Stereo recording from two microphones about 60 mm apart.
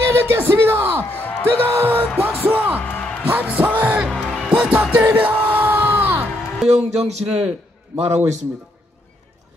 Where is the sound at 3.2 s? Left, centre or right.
Right.